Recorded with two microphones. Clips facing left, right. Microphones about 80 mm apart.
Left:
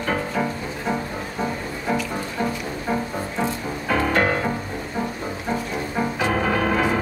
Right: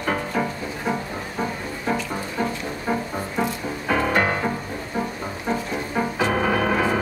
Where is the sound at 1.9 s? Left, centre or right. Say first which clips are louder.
Left 1 dB; centre.